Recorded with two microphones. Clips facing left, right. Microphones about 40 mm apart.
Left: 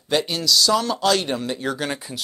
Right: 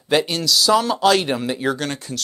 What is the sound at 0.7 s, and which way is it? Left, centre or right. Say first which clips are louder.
Speech: right 7 dB; centre.